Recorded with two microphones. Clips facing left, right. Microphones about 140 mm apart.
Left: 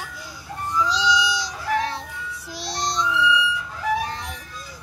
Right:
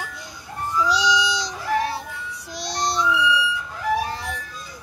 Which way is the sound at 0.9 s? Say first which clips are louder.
Right 2 dB; 15° right (ahead or behind).